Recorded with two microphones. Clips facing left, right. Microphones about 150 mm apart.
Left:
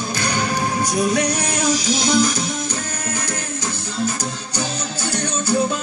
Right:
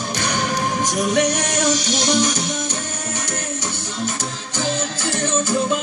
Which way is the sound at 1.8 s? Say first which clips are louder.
Left 1 dB; 85° right.